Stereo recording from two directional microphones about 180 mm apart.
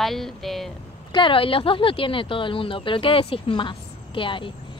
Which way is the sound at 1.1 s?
30° left (ahead or behind).